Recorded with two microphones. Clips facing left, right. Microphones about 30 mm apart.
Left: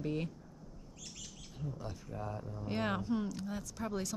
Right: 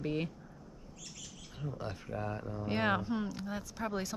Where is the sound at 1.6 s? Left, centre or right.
Right.